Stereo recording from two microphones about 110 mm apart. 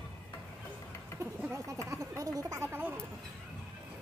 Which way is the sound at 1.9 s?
30° right (ahead or behind).